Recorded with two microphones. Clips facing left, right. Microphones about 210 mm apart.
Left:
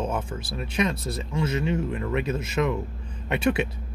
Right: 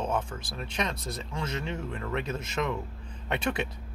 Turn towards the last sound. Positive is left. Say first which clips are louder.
# left 6 dB
turn(degrees=5)  # may be behind; listen again after turning